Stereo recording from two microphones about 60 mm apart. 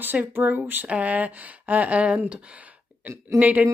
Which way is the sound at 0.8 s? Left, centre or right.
Right.